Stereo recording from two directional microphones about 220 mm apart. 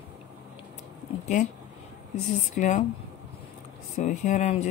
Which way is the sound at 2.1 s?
35° left (ahead or behind).